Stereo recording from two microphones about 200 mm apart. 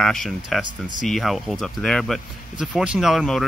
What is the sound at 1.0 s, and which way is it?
Speech, centre (ahead or behind).